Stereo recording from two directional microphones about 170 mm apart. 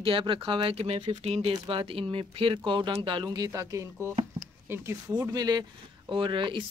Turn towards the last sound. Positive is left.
turn(degrees=-30)  # may be behind; listen again after turning